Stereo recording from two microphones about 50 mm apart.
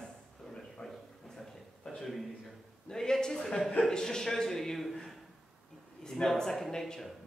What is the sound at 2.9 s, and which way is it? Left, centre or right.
A man's voice, centre.